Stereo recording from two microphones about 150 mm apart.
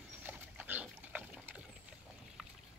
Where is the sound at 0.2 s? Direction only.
15° right (ahead or behind).